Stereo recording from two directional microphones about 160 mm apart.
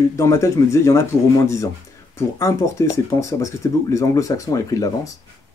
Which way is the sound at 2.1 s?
20° left (ahead or behind).